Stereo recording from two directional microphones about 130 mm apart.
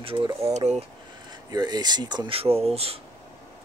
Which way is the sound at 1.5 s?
30° right (ahead or behind).